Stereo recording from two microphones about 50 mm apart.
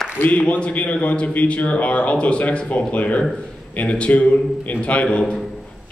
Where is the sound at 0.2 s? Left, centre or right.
Left.